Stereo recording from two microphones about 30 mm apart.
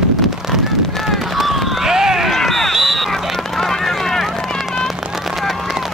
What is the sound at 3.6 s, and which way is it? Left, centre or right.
Run, centre.